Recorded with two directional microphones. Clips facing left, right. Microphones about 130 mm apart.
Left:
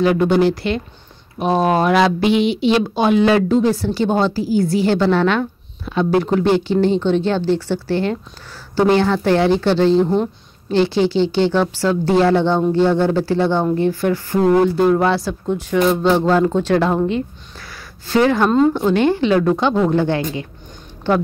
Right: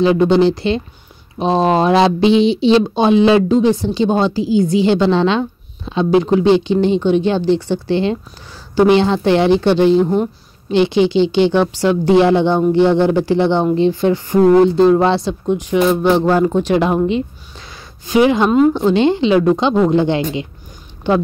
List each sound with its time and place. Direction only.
0.0 s a woman's voice: 25° right (ahead or behind)